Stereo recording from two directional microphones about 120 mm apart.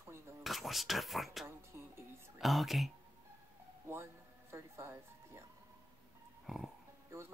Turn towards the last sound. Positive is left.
turn(degrees=-5)  # may be behind; listen again after turning